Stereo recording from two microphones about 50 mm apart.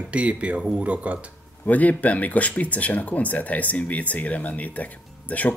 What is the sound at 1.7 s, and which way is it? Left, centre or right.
Speech, left.